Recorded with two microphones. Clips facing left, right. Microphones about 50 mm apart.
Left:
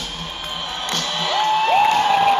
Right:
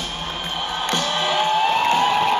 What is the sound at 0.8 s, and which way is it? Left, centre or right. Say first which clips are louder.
Music: right 2 dB; centre.